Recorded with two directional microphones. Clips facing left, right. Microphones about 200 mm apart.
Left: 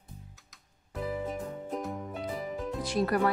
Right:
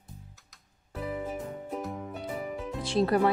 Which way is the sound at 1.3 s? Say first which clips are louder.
Even; centre (ahead or behind).